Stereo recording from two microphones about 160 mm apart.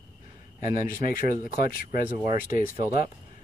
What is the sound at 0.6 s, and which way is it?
Speech, 55° left (ahead or behind).